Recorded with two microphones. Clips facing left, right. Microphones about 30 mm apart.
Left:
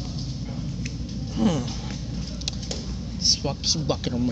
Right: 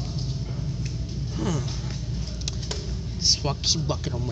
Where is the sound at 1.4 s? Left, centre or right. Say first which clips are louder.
Left 6 dB; left.